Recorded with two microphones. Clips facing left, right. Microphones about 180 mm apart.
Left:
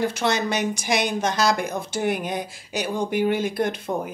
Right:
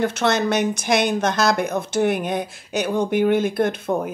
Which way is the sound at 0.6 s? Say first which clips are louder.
Right 4 dB; 60° right (ahead or behind).